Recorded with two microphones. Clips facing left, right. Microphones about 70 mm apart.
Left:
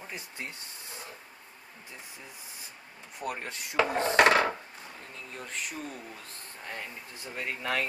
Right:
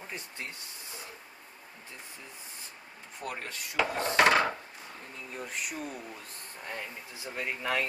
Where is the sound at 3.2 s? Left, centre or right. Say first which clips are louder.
Left 3 dB; centre.